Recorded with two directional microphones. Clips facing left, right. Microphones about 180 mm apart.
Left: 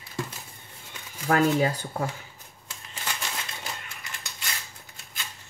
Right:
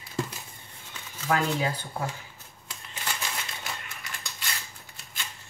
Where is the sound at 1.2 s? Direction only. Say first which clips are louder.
Left 5 dB; 45° left (ahead or behind).